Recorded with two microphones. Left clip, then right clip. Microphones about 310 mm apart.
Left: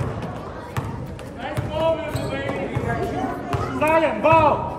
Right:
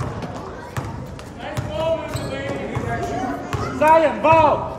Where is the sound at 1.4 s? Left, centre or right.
Centre.